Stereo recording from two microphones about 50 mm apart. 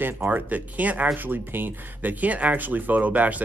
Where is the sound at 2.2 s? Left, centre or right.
Right.